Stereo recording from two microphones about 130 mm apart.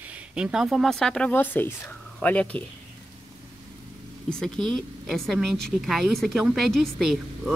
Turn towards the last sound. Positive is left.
turn(degrees=0)  # may be behind; listen again after turning